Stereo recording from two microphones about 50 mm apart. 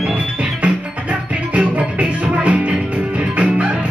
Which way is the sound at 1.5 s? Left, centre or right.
Right.